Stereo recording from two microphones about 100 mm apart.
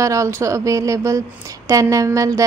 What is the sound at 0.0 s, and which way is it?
A woman's voice, 30° right (ahead or behind).